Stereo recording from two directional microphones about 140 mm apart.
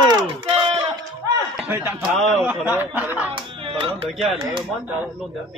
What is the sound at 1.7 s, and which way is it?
Speech, 15° right (ahead or behind).